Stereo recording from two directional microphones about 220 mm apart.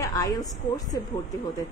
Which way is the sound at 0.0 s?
15° left (ahead or behind).